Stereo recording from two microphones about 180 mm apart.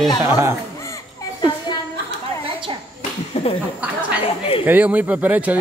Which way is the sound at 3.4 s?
40° left (ahead or behind).